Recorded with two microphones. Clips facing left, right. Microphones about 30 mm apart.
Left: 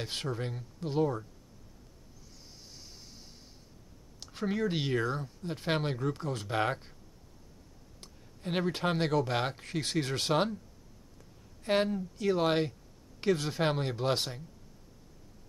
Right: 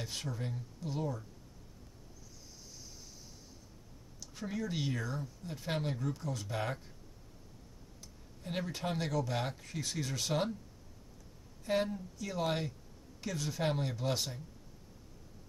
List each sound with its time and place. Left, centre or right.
0.0 s speech: left
2.7 s vehicle: left
4.2 s speech: left
8.0 s speech: left
11.6 s speech: left